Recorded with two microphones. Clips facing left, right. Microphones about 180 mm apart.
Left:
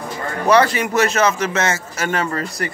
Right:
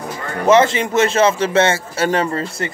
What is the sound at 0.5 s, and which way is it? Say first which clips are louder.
A man's voice: right 2 dB; 25° right (ahead or behind).